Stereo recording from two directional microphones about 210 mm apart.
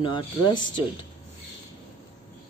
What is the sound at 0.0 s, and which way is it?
Speech, 20° left (ahead or behind).